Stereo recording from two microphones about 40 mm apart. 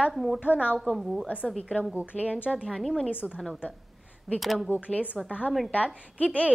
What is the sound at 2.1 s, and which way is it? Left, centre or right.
Speech, left.